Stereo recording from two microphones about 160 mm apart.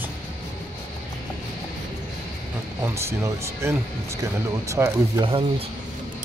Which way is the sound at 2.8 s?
15° right (ahead or behind).